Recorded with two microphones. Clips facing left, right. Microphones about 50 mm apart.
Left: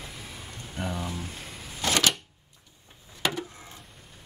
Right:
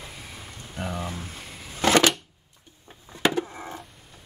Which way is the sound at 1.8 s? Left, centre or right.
Right.